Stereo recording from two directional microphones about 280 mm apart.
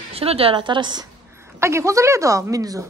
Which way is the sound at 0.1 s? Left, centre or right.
Right.